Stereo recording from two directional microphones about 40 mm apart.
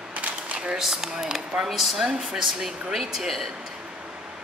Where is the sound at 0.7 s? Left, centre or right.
Centre.